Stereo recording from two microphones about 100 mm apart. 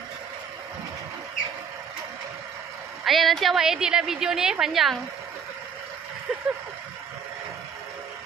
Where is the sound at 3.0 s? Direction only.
Centre (ahead or behind).